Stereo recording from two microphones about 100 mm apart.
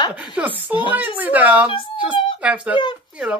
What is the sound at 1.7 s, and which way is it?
Speech, 60° left (ahead or behind).